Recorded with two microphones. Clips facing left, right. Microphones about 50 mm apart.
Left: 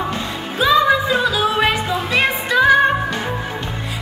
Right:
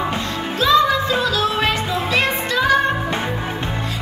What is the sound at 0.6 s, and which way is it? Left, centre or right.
Music, centre.